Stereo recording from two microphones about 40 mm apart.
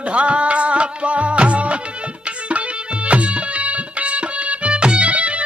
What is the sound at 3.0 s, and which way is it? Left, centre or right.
Music, right.